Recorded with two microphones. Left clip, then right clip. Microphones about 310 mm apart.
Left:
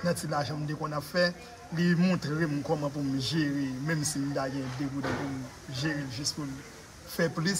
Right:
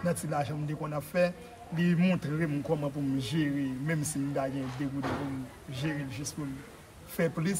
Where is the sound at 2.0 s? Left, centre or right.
Centre.